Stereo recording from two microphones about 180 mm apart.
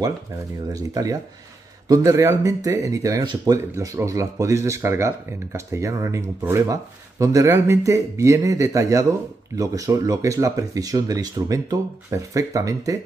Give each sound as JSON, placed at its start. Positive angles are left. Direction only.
{"t": 1.9, "sound": "speech", "side_deg": -15}